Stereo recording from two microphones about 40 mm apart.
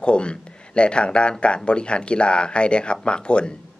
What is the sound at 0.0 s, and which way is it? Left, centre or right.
Speech, left.